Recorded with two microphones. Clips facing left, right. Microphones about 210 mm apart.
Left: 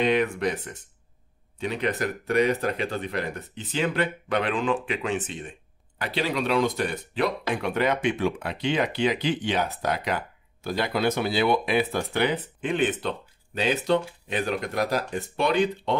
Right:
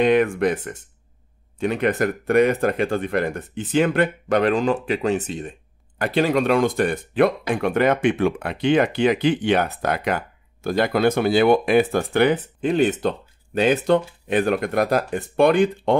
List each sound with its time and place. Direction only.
0.0 s speech: 50° right (ahead or behind)
13.6 s speech: 50° right (ahead or behind)